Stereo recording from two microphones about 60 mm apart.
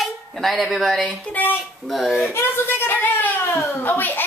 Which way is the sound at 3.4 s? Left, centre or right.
Left.